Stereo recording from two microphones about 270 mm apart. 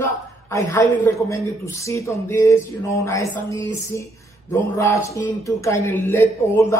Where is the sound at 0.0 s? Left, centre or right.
Centre.